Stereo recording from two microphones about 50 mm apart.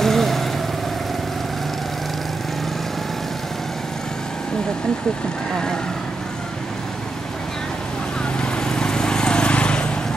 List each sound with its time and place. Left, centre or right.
0.0 s vehicle: centre
8.4 s vehicle: centre